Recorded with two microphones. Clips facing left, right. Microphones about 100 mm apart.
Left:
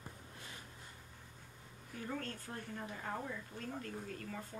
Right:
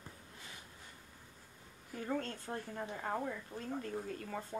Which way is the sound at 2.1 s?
25° right (ahead or behind).